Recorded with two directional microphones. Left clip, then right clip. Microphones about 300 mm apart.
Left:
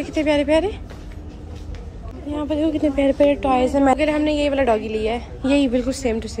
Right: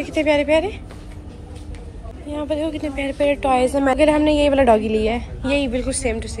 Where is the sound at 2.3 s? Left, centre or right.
Centre.